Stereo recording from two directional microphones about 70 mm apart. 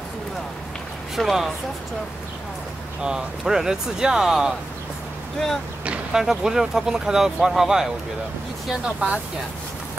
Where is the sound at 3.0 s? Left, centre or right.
Centre.